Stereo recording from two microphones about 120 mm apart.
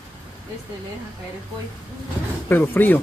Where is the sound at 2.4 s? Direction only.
15° left (ahead or behind).